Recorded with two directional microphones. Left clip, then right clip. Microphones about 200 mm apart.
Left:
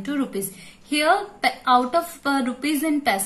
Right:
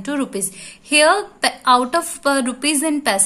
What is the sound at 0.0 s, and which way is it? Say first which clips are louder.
A woman's voice: right 3 dB; 40° right (ahead or behind).